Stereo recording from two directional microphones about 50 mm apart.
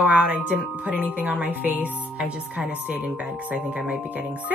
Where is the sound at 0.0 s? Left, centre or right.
Right.